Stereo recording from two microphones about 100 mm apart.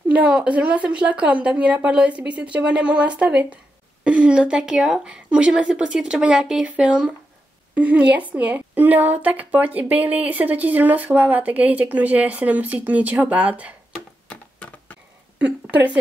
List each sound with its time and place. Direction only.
0.1 s a woman's voice: 15° right (ahead or behind)
14.3 s a sound: 15° left (ahead or behind)
15.4 s a woman's voice: 15° right (ahead or behind)